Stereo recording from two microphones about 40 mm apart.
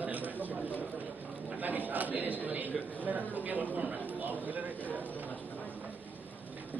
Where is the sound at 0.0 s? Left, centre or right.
Right.